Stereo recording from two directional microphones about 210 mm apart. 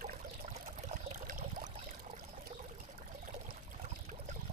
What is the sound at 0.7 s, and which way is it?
Pour, 35° right (ahead or behind).